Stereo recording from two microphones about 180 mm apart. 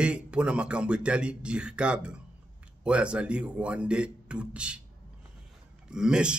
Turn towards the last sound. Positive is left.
turn(degrees=-5)  # may be behind; listen again after turning